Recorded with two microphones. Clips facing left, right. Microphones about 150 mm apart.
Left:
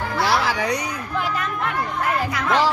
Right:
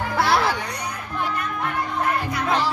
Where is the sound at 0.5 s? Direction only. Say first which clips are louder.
Left 4 dB; 90° left.